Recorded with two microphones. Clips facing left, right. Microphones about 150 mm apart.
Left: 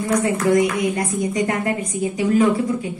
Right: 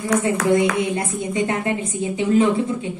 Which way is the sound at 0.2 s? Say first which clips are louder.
Left 1 dB; 25° right (ahead or behind).